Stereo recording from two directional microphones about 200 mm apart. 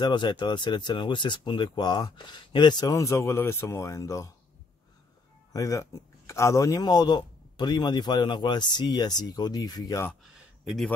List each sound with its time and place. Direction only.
0.0 s speech: 25° left (ahead or behind)
5.5 s speech: 15° left (ahead or behind)
10.2 s a sound: centre (ahead or behind)